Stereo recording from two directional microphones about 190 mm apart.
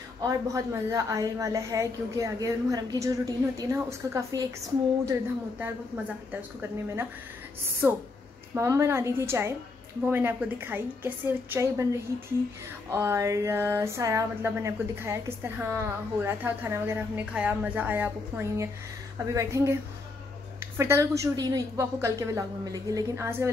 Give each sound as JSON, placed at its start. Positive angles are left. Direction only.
{"t": 0.2, "sound": "speech", "side_deg": -15}
{"t": 5.6, "sound": "speech", "side_deg": -10}
{"t": 8.5, "sound": "speech", "side_deg": -15}
{"t": 20.7, "sound": "speech", "side_deg": -15}